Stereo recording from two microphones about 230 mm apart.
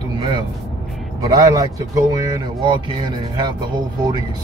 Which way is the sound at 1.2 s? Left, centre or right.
Centre.